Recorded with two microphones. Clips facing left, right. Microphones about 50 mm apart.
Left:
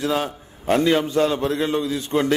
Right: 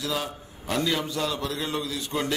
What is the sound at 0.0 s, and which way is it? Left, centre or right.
A man's voice, left.